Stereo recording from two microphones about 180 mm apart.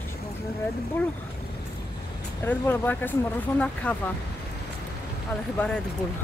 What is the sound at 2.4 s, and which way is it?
Speech, 10° left (ahead or behind).